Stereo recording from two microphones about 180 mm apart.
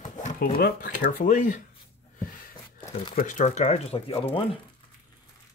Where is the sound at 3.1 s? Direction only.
45° left (ahead or behind); by 4.6 s 30° left (ahead or behind).